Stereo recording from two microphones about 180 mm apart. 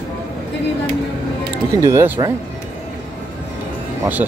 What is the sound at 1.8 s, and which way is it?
Speech, 15° right (ahead or behind).